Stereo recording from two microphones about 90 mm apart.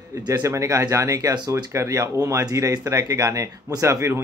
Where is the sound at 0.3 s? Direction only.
35° right (ahead or behind).